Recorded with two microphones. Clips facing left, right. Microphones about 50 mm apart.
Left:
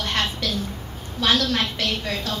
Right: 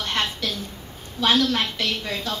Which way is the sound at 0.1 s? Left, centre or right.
Right.